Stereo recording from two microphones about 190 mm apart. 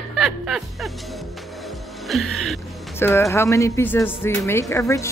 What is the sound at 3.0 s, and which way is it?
Speech, 15° left (ahead or behind).